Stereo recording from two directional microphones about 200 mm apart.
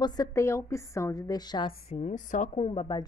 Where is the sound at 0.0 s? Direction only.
20° left (ahead or behind).